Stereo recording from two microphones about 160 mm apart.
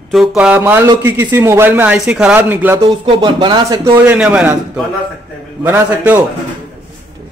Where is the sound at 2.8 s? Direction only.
35° right (ahead or behind).